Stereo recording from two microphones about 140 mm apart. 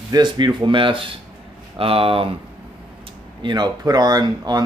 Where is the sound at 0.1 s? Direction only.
30° right (ahead or behind).